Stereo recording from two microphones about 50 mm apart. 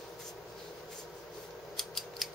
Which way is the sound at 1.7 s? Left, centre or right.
Centre.